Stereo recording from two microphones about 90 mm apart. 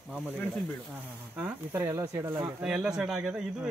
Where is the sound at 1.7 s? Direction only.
30° right (ahead or behind).